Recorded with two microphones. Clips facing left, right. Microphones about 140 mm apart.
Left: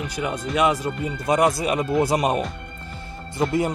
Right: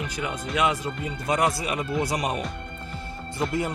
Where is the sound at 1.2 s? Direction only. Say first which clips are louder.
Left 5 dB; 35° left (ahead or behind).